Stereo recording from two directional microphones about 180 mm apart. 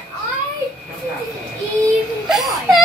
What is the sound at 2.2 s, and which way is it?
Speech, centre (ahead or behind).